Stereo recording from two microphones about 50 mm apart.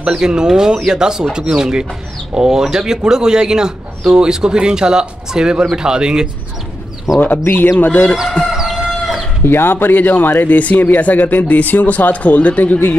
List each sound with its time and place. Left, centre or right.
0.1 s speech: centre
7.8 s speech: left
8.5 s chicken: centre
9.4 s speech: left